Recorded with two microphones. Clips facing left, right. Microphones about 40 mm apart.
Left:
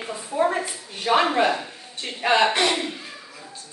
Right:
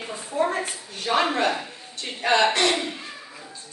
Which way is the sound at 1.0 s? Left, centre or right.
Left.